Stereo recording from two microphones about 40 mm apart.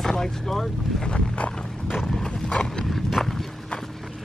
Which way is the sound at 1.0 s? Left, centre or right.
Left.